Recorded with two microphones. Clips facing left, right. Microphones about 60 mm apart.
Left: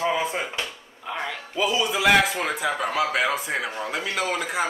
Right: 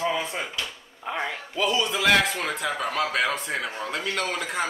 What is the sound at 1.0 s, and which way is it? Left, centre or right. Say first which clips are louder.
Speech: right 1 dB; centre.